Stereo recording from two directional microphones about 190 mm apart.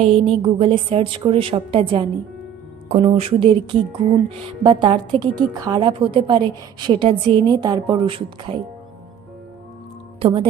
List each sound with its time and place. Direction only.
0.0 s a woman's voice: 30° right (ahead or behind)